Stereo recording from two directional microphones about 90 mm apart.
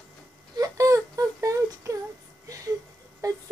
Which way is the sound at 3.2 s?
40° right (ahead or behind).